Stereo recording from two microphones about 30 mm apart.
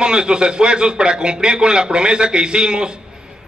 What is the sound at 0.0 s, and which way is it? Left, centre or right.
A man's voice, right.